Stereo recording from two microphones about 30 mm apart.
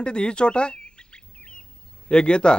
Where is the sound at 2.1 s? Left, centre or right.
Left.